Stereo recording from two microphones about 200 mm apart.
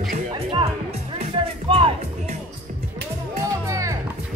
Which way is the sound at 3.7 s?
15° right (ahead or behind).